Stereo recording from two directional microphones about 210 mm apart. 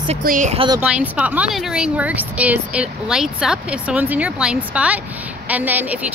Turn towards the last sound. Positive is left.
turn(degrees=-10)  # may be behind; listen again after turning